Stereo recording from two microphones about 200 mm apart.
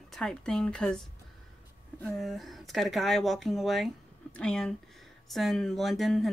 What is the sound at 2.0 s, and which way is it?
Speech, centre (ahead or behind).